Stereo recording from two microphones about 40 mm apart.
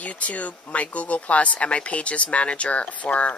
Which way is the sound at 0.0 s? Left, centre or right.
Left.